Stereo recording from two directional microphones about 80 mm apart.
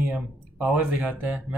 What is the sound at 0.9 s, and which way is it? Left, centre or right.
Speech, centre.